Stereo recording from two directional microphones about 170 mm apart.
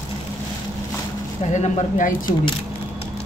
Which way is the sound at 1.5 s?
45° left (ahead or behind).